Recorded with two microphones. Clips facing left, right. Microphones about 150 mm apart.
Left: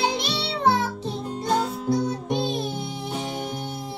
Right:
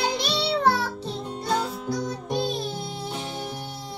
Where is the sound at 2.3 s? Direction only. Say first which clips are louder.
Right 1 dB; 20° left (ahead or behind).